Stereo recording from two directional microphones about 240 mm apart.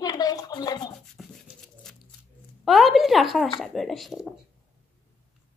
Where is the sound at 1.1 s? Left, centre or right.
Centre.